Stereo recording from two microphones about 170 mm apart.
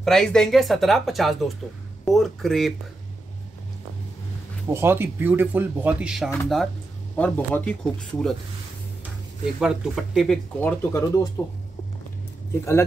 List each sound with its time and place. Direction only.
0.0 s speech: centre (ahead or behind)
4.6 s speech: 15° right (ahead or behind); by 8.4 s 5° left (ahead or behind)
9.6 s speech: centre (ahead or behind); by 11.1 s 15° left (ahead or behind)
11.4 s speech: 25° left (ahead or behind)